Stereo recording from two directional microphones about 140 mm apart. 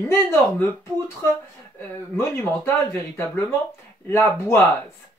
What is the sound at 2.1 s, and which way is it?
Speech, 15° left (ahead or behind).